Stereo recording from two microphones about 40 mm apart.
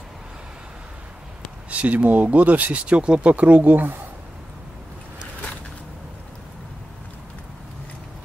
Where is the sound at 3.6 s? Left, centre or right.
Right.